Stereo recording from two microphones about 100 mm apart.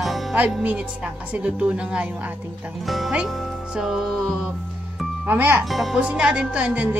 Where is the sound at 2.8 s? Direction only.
Centre (ahead or behind).